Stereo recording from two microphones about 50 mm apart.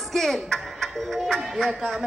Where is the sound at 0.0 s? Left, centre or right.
Centre.